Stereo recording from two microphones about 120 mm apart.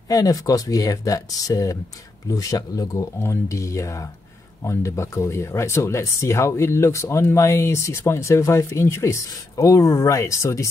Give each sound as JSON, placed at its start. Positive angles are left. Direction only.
{"t": 0.1, "sound": "speech", "side_deg": 30}